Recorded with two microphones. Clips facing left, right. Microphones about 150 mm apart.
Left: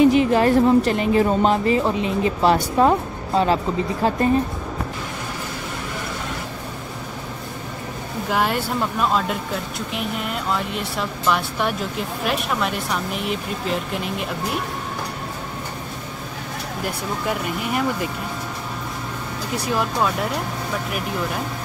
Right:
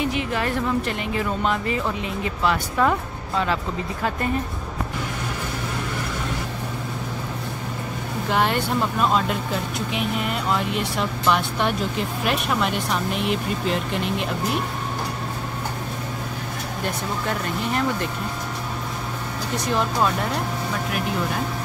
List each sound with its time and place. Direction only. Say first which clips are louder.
0.0 s a woman's voice: left 10 dB; 35° left (ahead or behind)
8.3 s speech: even; 5° left (ahead or behind)
16.8 s speech: left 1 dB; 10° left (ahead or behind)
19.5 s speech: even; 5° left (ahead or behind)